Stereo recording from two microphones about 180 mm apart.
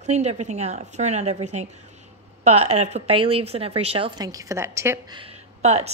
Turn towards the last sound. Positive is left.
turn(degrees=-35)  # may be behind; listen again after turning